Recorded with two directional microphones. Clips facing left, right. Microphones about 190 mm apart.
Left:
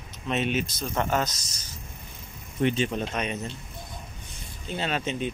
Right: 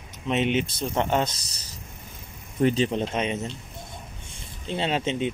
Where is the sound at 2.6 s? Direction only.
40° right (ahead or behind).